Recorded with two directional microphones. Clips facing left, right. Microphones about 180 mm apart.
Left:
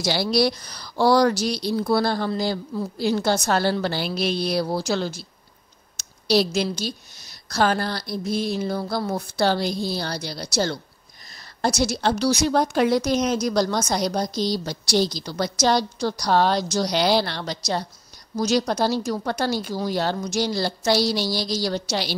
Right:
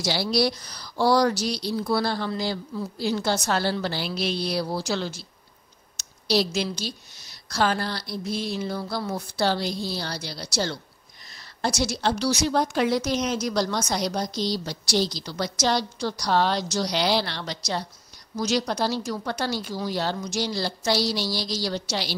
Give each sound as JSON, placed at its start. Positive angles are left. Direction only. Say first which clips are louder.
{"t": 0.0, "sound": "speech", "louder": "left 3 dB", "side_deg": 55}
{"t": 6.2, "sound": "speech", "louder": "left 3 dB", "side_deg": 50}